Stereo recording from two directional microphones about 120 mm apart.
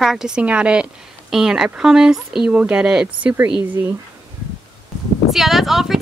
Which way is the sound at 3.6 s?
20° right (ahead or behind).